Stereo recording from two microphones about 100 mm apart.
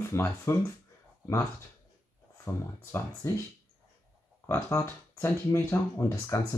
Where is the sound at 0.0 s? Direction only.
25° left (ahead or behind).